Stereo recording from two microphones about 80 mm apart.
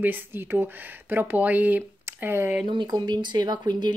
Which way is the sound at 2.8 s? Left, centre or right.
Right.